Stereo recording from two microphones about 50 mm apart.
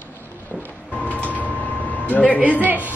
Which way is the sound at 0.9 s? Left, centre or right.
Left.